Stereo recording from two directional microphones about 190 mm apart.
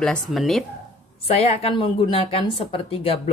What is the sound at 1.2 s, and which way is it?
A woman's voice, 30° left (ahead or behind).